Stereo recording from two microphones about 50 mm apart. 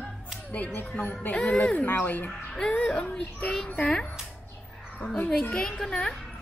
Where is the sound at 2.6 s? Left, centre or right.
Centre.